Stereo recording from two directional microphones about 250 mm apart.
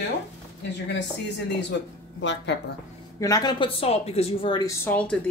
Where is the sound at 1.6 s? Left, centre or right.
Left.